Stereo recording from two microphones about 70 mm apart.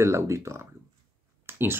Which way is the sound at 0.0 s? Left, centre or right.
Right.